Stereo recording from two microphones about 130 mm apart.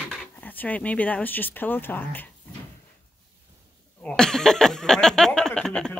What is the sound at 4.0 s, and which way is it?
Speech, 5° left (ahead or behind).